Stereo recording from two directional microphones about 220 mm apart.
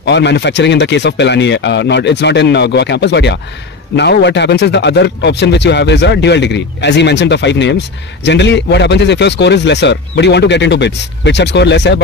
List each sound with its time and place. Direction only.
0.0 s a man's voice: 50° left (ahead or behind)